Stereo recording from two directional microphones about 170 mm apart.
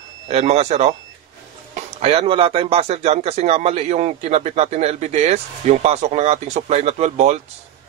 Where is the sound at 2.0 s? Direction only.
35° right (ahead or behind).